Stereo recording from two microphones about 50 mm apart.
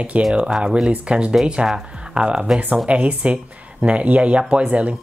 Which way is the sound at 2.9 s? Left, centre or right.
Right.